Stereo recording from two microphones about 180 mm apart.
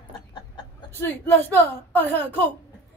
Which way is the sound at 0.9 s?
10° left (ahead or behind).